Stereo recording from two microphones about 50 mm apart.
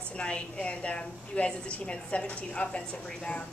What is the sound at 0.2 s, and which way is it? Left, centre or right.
A woman's voice, left.